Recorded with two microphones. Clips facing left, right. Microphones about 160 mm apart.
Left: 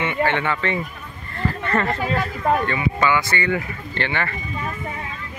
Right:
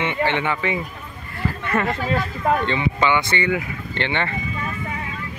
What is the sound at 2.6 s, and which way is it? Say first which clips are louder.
Speech: even; 20° right (ahead or behind).